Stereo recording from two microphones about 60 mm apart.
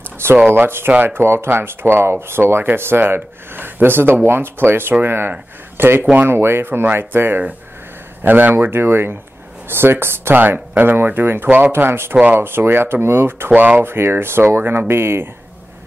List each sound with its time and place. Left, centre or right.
0.5 s speech: right
10.7 s speech: right